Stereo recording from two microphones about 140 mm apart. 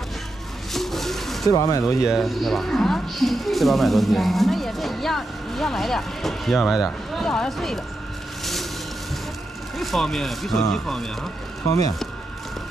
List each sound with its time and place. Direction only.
0.7 s a sound: centre (ahead or behind)
1.5 s speech: 25° left (ahead or behind)
2.0 s speech: centre (ahead or behind)
9.8 s speech: centre (ahead or behind)